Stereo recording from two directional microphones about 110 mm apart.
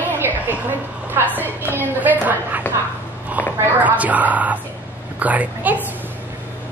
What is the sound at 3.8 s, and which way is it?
A woman's voice, 15° right (ahead or behind).